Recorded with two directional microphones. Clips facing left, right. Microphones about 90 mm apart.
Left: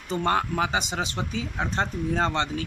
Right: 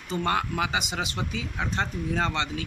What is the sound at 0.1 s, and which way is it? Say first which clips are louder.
Speech: left 2 dB; 30° left (ahead or behind).